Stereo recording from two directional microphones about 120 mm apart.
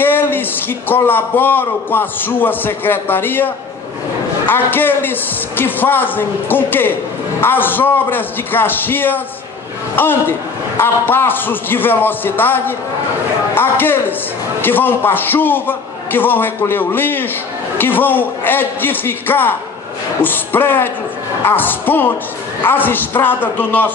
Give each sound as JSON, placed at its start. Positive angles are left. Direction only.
{"t": 0.0, "sound": "a man's voice", "side_deg": 15}
{"t": 4.5, "sound": "a man's voice", "side_deg": 15}